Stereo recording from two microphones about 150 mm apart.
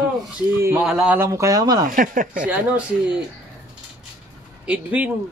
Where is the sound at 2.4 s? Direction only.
10° right (ahead or behind).